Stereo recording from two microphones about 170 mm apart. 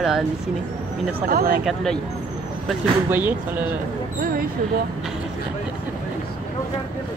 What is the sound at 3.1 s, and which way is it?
Speech, 10° right (ahead or behind).